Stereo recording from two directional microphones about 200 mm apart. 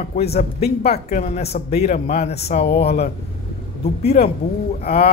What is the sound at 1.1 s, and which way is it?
Speech, 35° left (ahead or behind).